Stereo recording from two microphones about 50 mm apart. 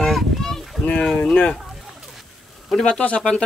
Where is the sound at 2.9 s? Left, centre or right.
Left.